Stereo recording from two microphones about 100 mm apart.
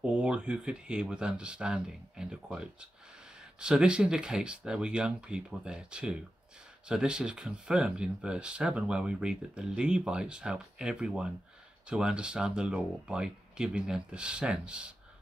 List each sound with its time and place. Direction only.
0.0 s speech: 10° right (ahead or behind)